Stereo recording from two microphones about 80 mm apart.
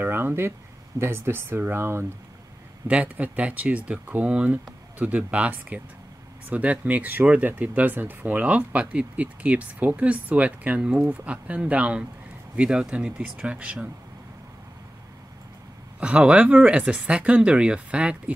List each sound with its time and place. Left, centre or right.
0.0 s speech: right
2.9 s speech: centre
16.0 s speech: centre